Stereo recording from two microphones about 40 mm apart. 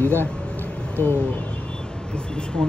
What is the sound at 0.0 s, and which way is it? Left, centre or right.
Speech, left.